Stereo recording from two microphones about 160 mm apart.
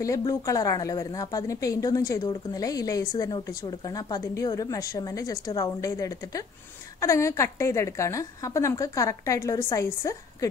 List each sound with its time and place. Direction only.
0.3 s a woman's voice: 20° left (ahead or behind)